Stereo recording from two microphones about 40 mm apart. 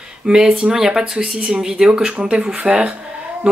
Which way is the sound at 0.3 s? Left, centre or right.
Centre.